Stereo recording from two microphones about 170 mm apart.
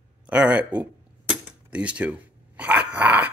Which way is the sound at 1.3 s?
5° right (ahead or behind).